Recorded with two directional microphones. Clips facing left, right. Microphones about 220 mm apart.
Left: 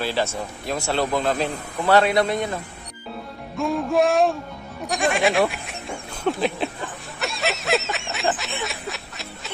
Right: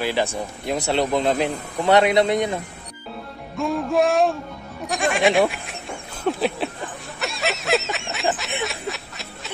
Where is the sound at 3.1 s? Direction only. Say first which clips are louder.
Even; centre (ahead or behind).